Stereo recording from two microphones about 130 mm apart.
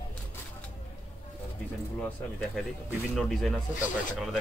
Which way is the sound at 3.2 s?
Centre (ahead or behind).